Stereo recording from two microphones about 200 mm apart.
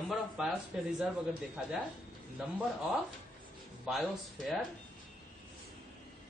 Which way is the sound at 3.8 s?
Centre (ahead or behind).